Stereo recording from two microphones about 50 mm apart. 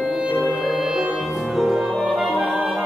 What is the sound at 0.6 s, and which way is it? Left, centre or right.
Music, centre.